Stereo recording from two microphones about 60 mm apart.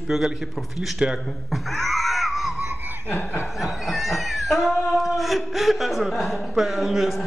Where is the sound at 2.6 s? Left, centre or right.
Right.